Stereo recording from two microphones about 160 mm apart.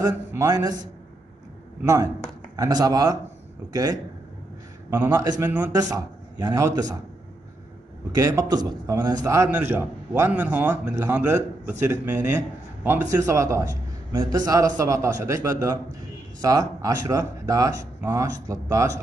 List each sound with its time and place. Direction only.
0.0 s speech: 20° right (ahead or behind)
1.8 s a man's voice: 20° right (ahead or behind)
8.1 s a man's voice: 20° right (ahead or behind)